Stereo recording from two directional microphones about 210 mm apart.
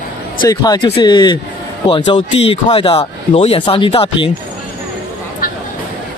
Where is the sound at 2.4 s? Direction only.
25° left (ahead or behind).